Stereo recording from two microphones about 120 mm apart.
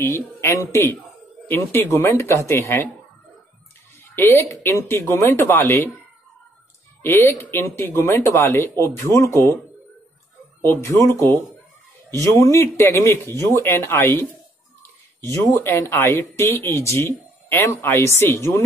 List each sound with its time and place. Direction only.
0.0 s speech: 20° left (ahead or behind)
4.1 s speech: 20° left (ahead or behind)
7.0 s speech: 20° left (ahead or behind)
10.6 s speech: 25° left (ahead or behind)
12.1 s speech: 25° left (ahead or behind)
15.2 s speech: 20° left (ahead or behind)